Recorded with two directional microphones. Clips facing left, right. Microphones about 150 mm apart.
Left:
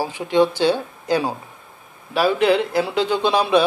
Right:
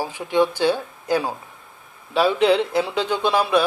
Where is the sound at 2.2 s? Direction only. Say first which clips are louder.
Even; 5° left (ahead or behind).